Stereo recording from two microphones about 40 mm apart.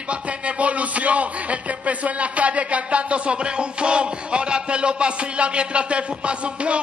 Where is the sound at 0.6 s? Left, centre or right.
Right.